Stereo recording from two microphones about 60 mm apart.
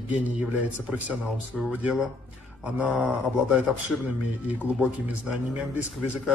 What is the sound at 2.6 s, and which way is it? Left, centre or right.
Speech, right.